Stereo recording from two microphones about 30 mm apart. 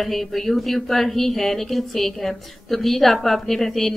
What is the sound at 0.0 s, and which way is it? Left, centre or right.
Speech, centre.